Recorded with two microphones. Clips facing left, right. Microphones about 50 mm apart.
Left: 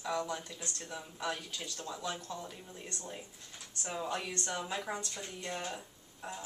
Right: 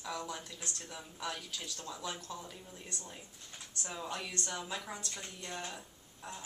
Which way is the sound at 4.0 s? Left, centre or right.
Centre.